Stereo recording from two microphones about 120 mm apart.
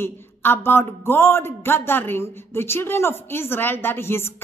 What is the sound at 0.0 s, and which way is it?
A woman's voice, 20° left (ahead or behind).